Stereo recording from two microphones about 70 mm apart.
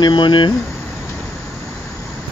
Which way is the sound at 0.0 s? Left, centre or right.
Left.